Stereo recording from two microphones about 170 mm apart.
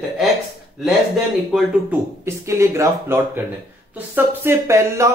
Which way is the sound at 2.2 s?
15° right (ahead or behind).